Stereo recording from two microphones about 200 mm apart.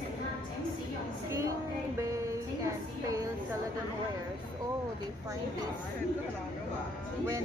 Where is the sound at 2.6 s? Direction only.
15° right (ahead or behind).